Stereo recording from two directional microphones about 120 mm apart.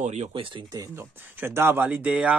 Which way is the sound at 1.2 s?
15° right (ahead or behind).